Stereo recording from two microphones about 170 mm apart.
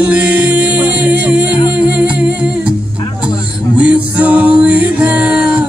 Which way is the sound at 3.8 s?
10° right (ahead or behind).